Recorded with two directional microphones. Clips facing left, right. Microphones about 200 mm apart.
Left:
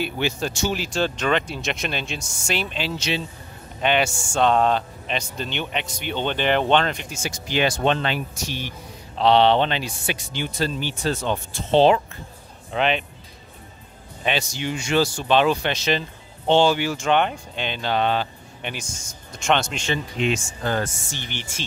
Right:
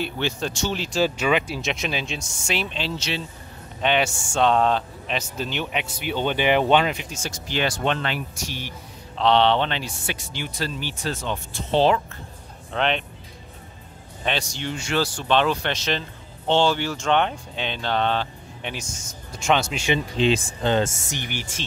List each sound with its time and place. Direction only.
0.0 s speech: 10° left (ahead or behind)
7.2 s speech: 15° left (ahead or behind)
9.2 s speech: 10° left (ahead or behind)
12.7 s speech: 5° left (ahead or behind)
14.2 s speech: 10° left (ahead or behind); by 20.0 s 10° right (ahead or behind)
20.2 s speech: 30° right (ahead or behind)
21.1 s speech: 10° right (ahead or behind)